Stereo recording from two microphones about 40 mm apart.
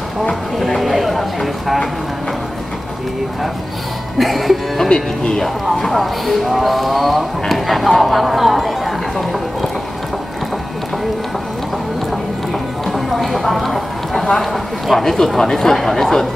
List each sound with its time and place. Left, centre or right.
0.3 s speech: centre
4.2 s speech: centre
4.8 s speech: centre
5.8 s speech: centre
12.8 s a sound: centre
14.4 s speech: centre